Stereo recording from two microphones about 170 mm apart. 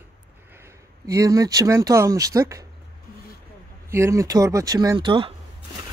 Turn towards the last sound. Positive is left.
turn(degrees=-25)  # may be behind; listen again after turning